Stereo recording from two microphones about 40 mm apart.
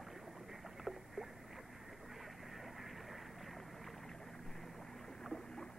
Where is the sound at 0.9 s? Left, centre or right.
Centre.